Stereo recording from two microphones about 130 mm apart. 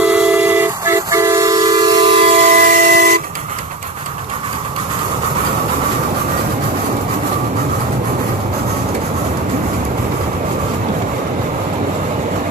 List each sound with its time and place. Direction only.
0.0 s train: 10° right (ahead or behind); by 2.0 s 30° right (ahead or behind)
2.1 s train: 55° right (ahead or behind)
2.5 s train: 90° right